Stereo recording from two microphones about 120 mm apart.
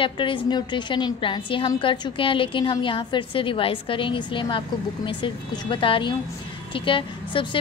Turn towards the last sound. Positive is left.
turn(degrees=45)  # may be behind; listen again after turning